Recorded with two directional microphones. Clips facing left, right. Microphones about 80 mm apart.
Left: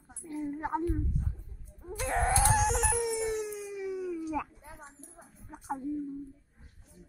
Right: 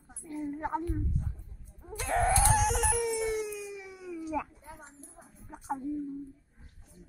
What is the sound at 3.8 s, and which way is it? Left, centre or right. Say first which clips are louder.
Cat: left 6 dB; left.